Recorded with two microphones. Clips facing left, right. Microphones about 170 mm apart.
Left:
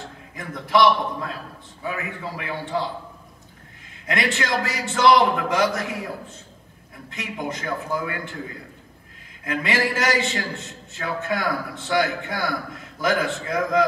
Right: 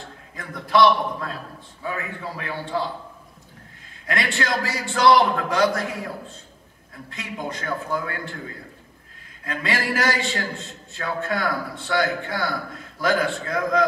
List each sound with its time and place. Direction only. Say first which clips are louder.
0.4 s a man's voice: right 1 dB; 20° left (ahead or behind)
4.0 s a man's voice: left 1 dB; 20° left (ahead or behind)
9.4 s a man's voice: left 3 dB; 20° left (ahead or behind)